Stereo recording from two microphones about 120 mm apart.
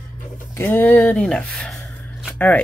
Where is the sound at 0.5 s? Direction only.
20° left (ahead or behind).